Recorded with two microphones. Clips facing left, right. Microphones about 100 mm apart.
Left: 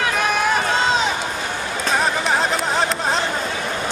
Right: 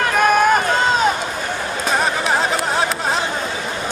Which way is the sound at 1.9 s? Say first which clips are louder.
Right 1 dB; centre (ahead or behind).